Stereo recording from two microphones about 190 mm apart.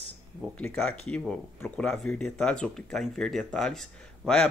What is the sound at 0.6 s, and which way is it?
Speech, 5° left (ahead or behind).